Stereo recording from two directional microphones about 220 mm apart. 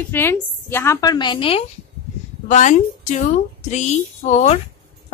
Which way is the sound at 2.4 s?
35° left (ahead or behind).